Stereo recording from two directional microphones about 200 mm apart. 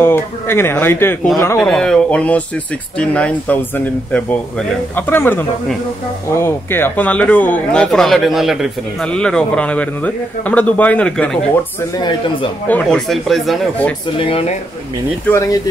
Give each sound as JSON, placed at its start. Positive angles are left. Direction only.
{"t": 0.0, "sound": "speech", "side_deg": 10}
{"t": 11.9, "sound": "speech", "side_deg": 20}
{"t": 12.6, "sound": "speech", "side_deg": 5}
{"t": 14.1, "sound": "speech", "side_deg": 25}
{"t": 15.2, "sound": "speech", "side_deg": 15}